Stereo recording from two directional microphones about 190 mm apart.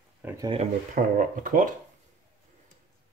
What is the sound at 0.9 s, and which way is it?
Speech, 45° right (ahead or behind).